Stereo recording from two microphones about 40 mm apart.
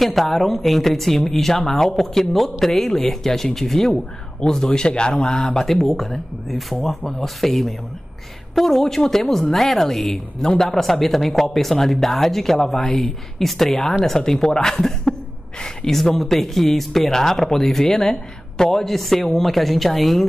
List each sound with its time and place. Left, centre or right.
0.0 s a man's voice: centre
5.8 s speech: centre
16.0 s speech: centre